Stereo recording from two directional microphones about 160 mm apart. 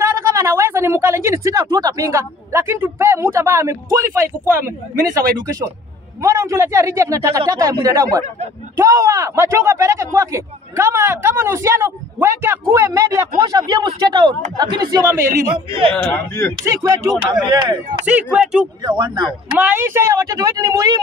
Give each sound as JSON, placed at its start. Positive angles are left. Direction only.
{"t": 0.0, "sound": "a man's voice", "side_deg": -20}
{"t": 15.9, "sound": "a man's voice", "side_deg": 10}
{"t": 16.6, "sound": "a man's voice", "side_deg": -25}
{"t": 18.0, "sound": "speech", "side_deg": -10}
{"t": 18.8, "sound": "a man's voice", "side_deg": -25}
{"t": 19.6, "sound": "a man's voice", "side_deg": -15}